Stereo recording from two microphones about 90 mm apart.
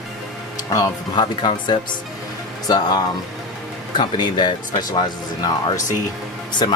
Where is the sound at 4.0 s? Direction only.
60° left (ahead or behind).